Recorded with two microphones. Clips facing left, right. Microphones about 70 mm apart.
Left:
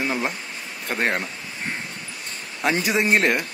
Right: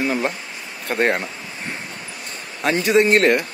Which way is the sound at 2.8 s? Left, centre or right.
Centre.